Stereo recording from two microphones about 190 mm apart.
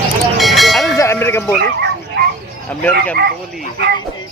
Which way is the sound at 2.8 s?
10° left (ahead or behind).